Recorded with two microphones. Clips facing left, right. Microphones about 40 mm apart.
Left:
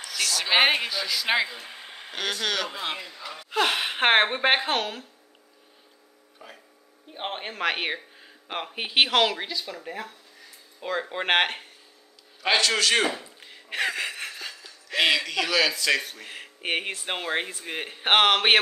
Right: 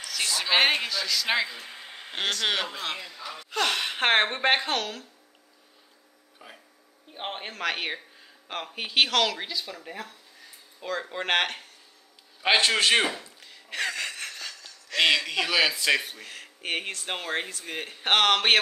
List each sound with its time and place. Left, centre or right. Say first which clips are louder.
0.2 s a man's voice: left 1 dB; right
0.5 s a man's voice: left 2 dB; centre
2.4 s a man's voice: even; centre
2.7 s speech: left 1 dB; centre
6.4 s speech: left 2 dB; centre
7.2 s speech: left 3 dB; centre
9.4 s speech: left 2 dB; centre
10.8 s speech: left 2 dB; centre
12.4 s a man's voice: right 1 dB; right
13.1 s a sound: left 3 dB; centre
15.0 s speech: even; centre
16.3 s speech: left 3 dB; centre